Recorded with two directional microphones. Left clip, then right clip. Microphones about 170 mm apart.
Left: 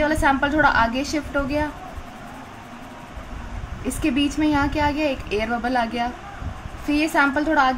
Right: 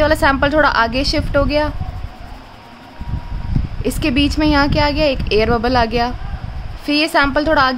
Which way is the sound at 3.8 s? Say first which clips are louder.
Right 5 dB; 60° right (ahead or behind).